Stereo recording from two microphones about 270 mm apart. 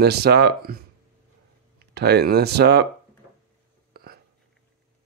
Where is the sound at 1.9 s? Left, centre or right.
Right.